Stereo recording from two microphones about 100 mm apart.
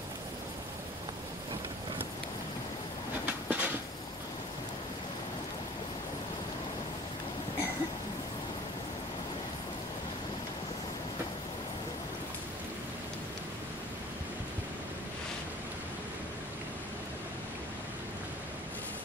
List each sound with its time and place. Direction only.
3.3 s train: 15° right (ahead or behind)